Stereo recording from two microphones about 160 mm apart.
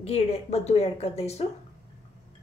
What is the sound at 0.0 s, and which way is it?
A woman's voice, 40° left (ahead or behind).